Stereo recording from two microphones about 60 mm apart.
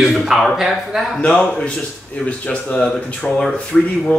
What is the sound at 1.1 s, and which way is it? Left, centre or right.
Speech, centre.